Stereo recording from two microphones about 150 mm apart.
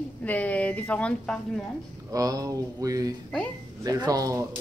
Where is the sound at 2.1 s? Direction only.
25° right (ahead or behind).